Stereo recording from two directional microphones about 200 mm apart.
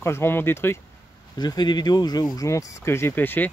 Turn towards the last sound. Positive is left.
turn(degrees=10)  # may be behind; listen again after turning